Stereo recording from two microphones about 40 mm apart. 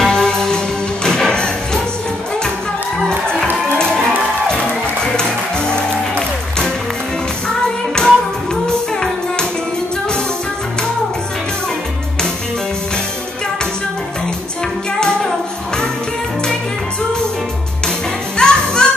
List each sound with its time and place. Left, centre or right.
0.0 s music: centre
3.7 s music: centre
5.0 s music: centre
7.4 s music: left
18.4 s music: centre